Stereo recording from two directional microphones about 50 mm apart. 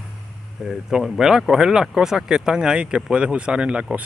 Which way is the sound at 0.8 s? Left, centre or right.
Centre.